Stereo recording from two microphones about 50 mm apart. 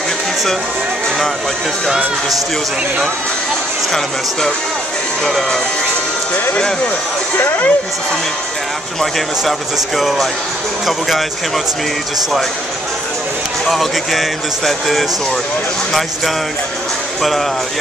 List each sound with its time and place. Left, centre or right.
7.3 s speech: left
9.0 s speech: centre
13.7 s speech: centre